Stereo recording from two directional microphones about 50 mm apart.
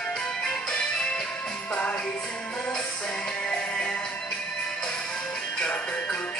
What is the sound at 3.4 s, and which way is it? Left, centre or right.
Music, left.